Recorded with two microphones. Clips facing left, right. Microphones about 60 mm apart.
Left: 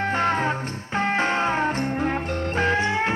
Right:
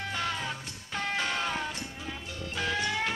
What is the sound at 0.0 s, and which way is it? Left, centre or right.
Music, left.